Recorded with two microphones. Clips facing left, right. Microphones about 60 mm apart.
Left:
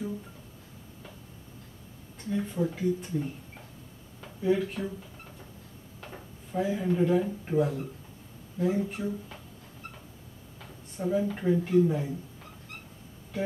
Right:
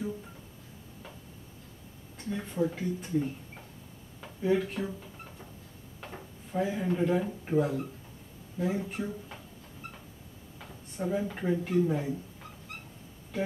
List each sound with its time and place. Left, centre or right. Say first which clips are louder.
2.2 s speech: left 1 dB; centre
5.9 s speech: right 1 dB; centre
11.0 s speech: left 3 dB; centre